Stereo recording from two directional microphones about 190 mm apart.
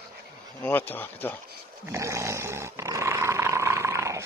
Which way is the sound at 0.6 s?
10° left (ahead or behind).